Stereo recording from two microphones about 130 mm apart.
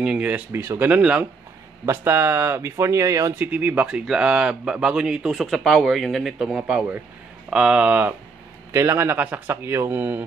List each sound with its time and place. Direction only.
0.0 s speech: 10° right (ahead or behind); by 3.4 s 25° right (ahead or behind)
3.5 s speech: 10° right (ahead or behind)
8.7 s speech: 20° right (ahead or behind)